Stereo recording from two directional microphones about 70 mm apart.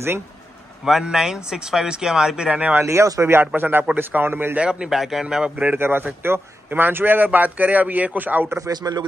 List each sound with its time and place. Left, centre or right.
0.8 s speech: centre
2.7 s speech: right
4.6 s speech: centre
5.7 s a man's voice: right
8.6 s a man's voice: right